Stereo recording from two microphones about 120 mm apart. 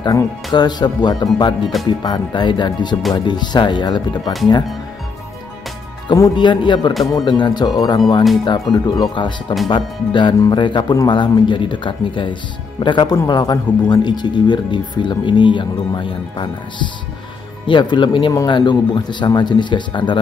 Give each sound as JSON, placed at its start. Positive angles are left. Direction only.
{"t": 0.0, "sound": "speech", "side_deg": 35}
{"t": 6.1, "sound": "speech", "side_deg": 35}
{"t": 6.9, "sound": "speech", "side_deg": 0}
{"t": 7.2, "sound": "speech", "side_deg": 35}